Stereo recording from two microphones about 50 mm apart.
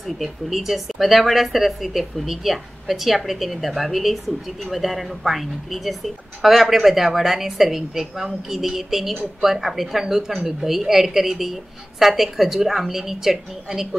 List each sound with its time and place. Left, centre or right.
0.0 s a woman's voice: centre